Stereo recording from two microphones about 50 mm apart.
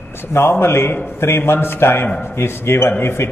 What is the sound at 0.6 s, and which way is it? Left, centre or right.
A man's voice, left.